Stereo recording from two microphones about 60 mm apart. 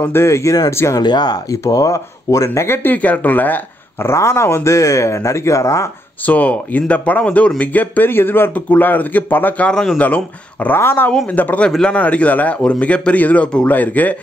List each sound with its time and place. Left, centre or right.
0.1 s speech: left
1.5 s speech: left
2.6 s speech: left
4.0 s speech: left
6.2 s speech: left
8.5 s speech: left
10.8 s speech: left
11.2 s speech: left